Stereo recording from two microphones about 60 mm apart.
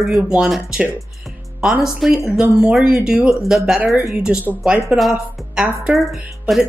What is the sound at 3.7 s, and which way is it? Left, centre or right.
Speech, centre.